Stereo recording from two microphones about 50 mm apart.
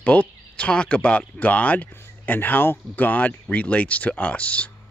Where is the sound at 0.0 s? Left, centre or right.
Left.